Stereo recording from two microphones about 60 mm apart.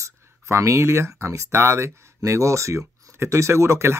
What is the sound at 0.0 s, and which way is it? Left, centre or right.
Speech, right.